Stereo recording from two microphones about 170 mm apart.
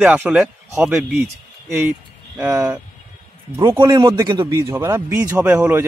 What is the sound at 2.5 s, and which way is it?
A man's voice, 20° right (ahead or behind).